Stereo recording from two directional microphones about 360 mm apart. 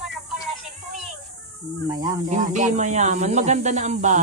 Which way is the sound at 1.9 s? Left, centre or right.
Centre.